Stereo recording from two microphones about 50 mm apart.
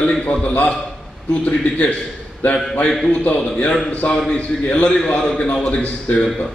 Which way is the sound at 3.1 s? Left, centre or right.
Left.